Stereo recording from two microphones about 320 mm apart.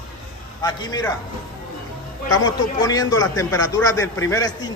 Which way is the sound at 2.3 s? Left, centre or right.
Centre.